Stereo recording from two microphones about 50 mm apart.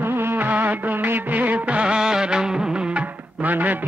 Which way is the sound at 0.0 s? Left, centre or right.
Right.